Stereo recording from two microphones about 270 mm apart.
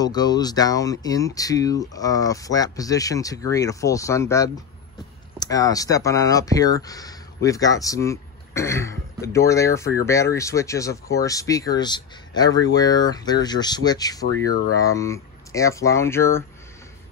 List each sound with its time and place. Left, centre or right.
0.0 s speech: centre